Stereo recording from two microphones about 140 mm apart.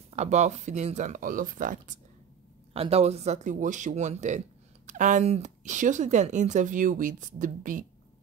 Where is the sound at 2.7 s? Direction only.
45° right (ahead or behind); by 7.8 s 65° right (ahead or behind).